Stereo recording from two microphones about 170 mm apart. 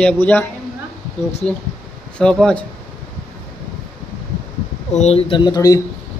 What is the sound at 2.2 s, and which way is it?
Speech, 5° left (ahead or behind).